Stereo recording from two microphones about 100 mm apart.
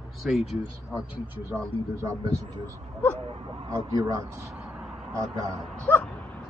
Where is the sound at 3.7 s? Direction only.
35° right (ahead or behind).